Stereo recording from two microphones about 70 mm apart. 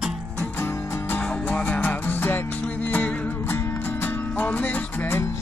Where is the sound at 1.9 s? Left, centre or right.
Left.